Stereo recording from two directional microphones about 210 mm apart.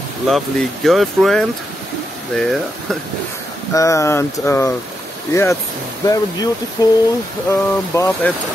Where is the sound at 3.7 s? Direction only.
15° left (ahead or behind).